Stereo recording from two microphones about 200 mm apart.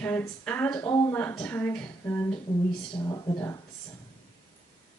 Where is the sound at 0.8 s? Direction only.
15° left (ahead or behind).